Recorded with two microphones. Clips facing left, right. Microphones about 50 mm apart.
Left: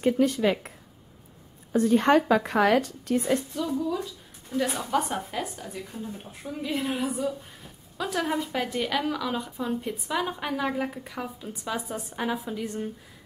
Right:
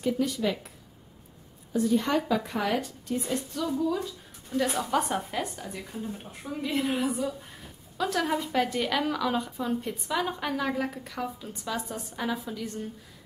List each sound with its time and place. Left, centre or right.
0.0 s speech: left
3.6 s speech: centre
3.9 s a woman's voice: centre; by 12.9 s left